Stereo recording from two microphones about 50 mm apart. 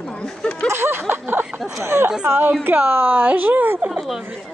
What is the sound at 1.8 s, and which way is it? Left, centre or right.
Speech, right.